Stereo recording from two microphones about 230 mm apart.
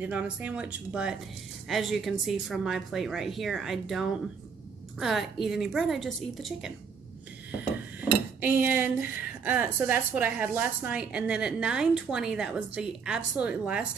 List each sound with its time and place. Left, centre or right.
0.0 s speech: centre
8.0 s speech: centre